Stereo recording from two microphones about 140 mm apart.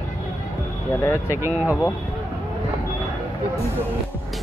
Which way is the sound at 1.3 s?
15° right (ahead or behind).